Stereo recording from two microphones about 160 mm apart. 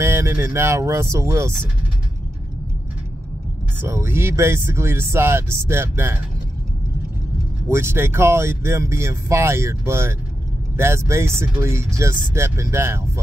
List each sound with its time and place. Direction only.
0.0 s speech: 15° right (ahead or behind)
3.8 s speech: 15° right (ahead or behind)
7.6 s speech: 15° right (ahead or behind)